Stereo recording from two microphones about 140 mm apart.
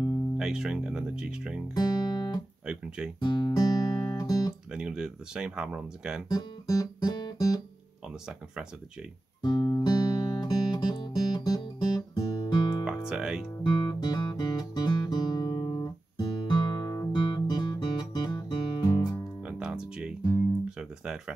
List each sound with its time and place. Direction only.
0.4 s speech: 5° right (ahead or behind)
1.8 s guitar: 25° left (ahead or behind)
2.6 s speech: 5° right (ahead or behind)
3.2 s music: 30° left (ahead or behind)
4.7 s speech: 5° right (ahead or behind)
6.2 s guitar: 25° left (ahead or behind)
9.4 s music: 30° left (ahead or behind)
12.8 s music: 5° right (ahead or behind)
13.6 s guitar: 30° left (ahead or behind)
19.4 s music: 5° right (ahead or behind)